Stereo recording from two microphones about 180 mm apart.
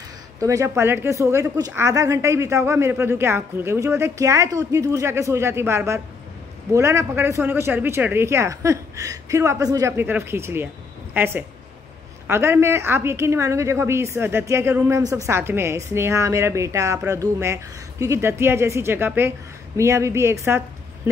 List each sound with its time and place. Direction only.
0.4 s a woman's voice: 20° right (ahead or behind)